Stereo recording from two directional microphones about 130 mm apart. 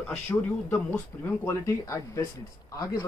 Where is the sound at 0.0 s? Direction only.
15° left (ahead or behind).